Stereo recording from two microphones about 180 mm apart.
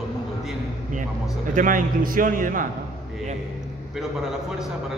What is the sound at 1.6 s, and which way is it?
A man's voice, 50° right (ahead or behind).